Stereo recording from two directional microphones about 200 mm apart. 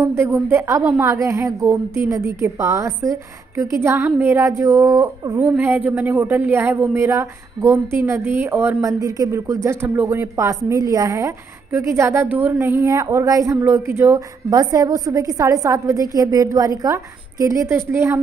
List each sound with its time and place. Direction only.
0.0 s a woman's voice: 10° right (ahead or behind)